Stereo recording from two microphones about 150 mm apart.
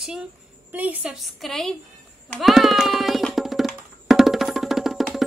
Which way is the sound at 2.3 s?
Centre (ahead or behind).